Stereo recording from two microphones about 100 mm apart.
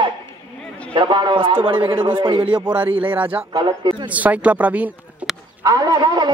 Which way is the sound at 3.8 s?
50° right (ahead or behind).